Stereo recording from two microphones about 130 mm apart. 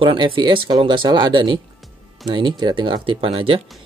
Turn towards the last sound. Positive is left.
turn(degrees=-45)  # may be behind; listen again after turning